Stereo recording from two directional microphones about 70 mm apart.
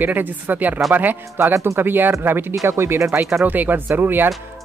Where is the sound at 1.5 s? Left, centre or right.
Right.